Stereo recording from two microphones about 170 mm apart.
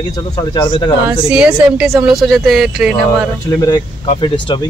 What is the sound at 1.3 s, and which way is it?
Speech, 5° right (ahead or behind).